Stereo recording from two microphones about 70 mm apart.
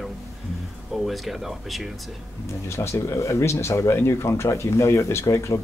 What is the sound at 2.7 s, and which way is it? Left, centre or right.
Speech, left.